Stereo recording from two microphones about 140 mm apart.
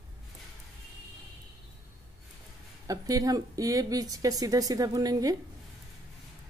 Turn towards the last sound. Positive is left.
turn(degrees=-25)  # may be behind; listen again after turning